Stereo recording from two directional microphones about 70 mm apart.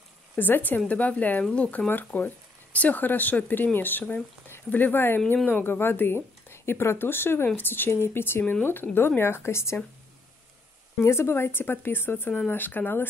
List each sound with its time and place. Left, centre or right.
0.4 s a woman's voice: left
11.0 s a woman's voice: left